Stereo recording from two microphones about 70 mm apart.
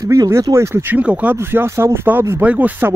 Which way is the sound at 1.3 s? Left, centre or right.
Right.